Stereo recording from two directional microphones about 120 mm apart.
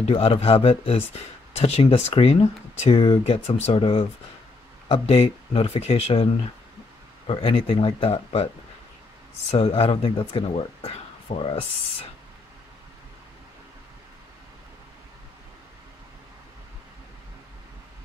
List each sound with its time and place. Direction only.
0.0 s speech: 50° left (ahead or behind)
7.2 s speech: 50° left (ahead or behind)
9.5 s speech: 55° left (ahead or behind)